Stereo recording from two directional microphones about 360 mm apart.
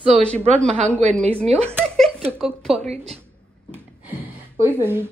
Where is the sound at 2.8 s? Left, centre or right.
Centre.